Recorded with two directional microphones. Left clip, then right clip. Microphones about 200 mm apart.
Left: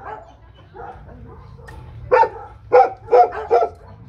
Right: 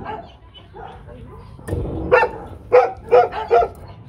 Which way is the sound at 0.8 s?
25° right (ahead or behind).